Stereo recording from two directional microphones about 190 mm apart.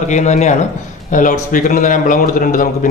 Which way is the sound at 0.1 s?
40° left (ahead or behind).